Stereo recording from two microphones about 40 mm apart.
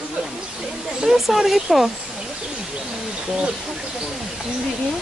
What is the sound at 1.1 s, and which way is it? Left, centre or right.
Speech, centre.